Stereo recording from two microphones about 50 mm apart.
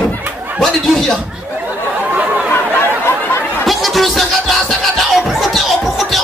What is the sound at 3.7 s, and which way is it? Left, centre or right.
Music, centre.